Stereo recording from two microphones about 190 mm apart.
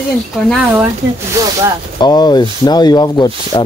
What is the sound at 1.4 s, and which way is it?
Speech, 15° right (ahead or behind).